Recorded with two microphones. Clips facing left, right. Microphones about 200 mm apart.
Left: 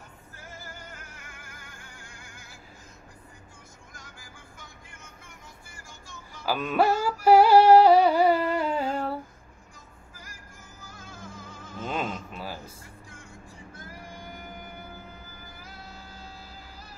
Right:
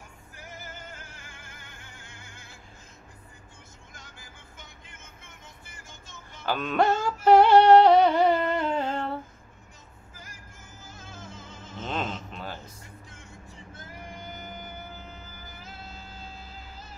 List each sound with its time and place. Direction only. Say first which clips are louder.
0.4 s music: right 1 dB; 20° right (ahead or behind)
3.9 s music: left 1 dB; 25° right (ahead or behind)
6.4 s music: left 1 dB; 5° left (ahead or behind)
10.1 s music: even; 25° right (ahead or behind)
11.9 s a sound: even; 10° left (ahead or behind)
13.7 s music: right 1 dB; 20° right (ahead or behind)